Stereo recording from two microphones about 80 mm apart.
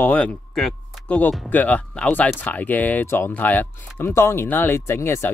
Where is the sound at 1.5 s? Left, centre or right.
Left.